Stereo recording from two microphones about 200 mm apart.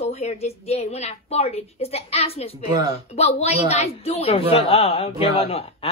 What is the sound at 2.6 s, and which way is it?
Speech, 20° right (ahead or behind).